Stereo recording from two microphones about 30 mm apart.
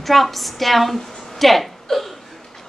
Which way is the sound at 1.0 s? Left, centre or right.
Centre.